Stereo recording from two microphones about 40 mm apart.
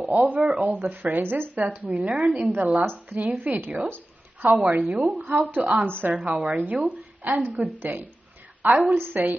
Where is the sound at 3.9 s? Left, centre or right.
Right.